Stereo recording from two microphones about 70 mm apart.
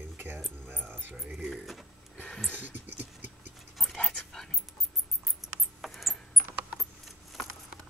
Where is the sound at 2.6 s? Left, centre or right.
Right.